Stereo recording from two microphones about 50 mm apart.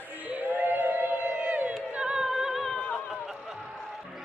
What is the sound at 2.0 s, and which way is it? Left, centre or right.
Music, centre.